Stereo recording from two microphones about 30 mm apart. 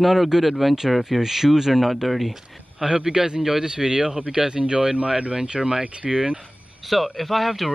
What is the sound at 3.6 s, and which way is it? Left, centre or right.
A man's voice, right.